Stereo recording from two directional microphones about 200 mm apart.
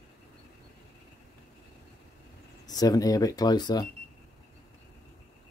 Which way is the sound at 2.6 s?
20° left (ahead or behind).